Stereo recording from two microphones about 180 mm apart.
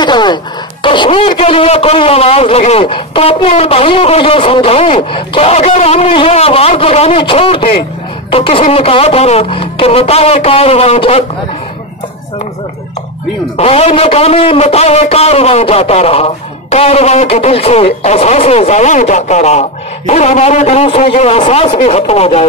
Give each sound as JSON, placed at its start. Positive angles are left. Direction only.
{"t": 0.0, "sound": "a sound", "side_deg": 25}
{"t": 0.8, "sound": "speech", "side_deg": 30}
{"t": 13.6, "sound": "speech", "side_deg": 35}